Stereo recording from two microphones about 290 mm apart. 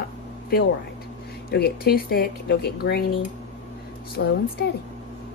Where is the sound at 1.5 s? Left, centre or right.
Left.